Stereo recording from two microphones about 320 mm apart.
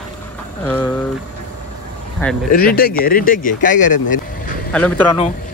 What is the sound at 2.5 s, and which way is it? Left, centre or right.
Speech, left.